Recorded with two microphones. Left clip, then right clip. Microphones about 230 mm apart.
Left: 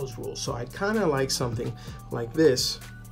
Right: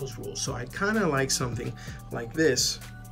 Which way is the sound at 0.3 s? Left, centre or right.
Centre.